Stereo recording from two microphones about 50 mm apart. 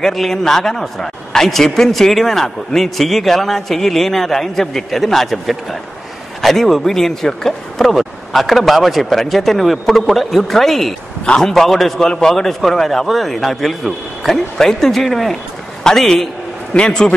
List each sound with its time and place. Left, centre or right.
0.0 s a man's voice: centre